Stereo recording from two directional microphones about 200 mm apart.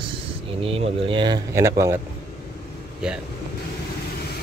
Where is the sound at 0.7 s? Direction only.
25° right (ahead or behind).